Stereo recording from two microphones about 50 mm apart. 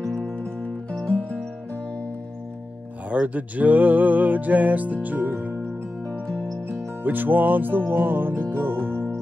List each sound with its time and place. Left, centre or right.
1.0 s music: left
3.1 s music: right
7.0 s music: right